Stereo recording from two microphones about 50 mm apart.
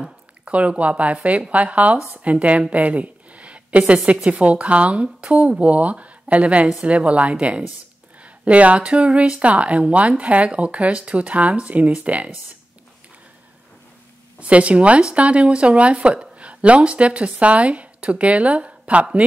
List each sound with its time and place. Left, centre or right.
0.5 s speech: right
14.4 s speech: right